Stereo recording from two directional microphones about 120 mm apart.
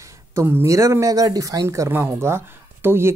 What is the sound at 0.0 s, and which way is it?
Speech, 25° right (ahead or behind).